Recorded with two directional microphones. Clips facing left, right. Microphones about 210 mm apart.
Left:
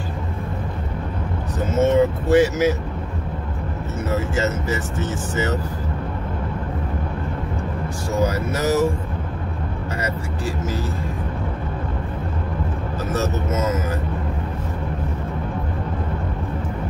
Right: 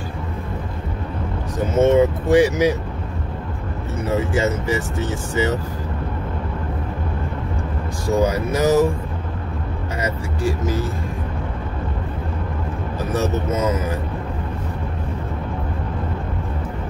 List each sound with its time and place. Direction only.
1.8 s speech: 15° right (ahead or behind)
4.4 s speech: 15° right (ahead or behind)
8.2 s speech: 15° right (ahead or behind)
10.0 s speech: 15° right (ahead or behind)
13.1 s speech: 15° right (ahead or behind)